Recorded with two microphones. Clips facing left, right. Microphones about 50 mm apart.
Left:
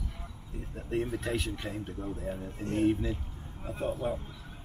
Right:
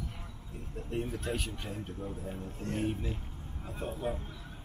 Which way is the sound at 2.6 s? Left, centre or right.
Centre.